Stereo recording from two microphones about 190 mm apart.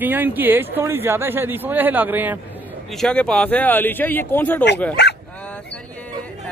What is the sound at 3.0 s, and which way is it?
Speech, 5° left (ahead or behind).